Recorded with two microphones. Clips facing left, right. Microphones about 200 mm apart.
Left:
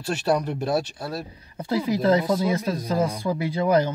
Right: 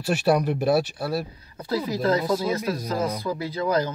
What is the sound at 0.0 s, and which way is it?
Speech, 10° right (ahead or behind).